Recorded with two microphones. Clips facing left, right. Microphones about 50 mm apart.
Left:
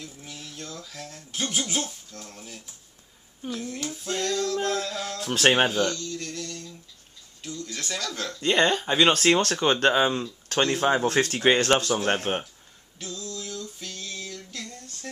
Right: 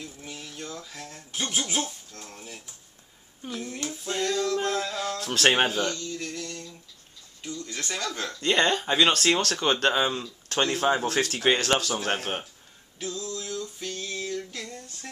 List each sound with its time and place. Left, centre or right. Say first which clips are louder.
0.0 s speech: right 1 dB; centre
5.2 s speech: left 2 dB; centre
5.6 s speech: left 2 dB; centre
8.4 s speech: left 1 dB; centre
11.1 s speech: left 3 dB; left
12.1 s speech: left 3 dB; centre
13.0 s a sound: right 3 dB; centre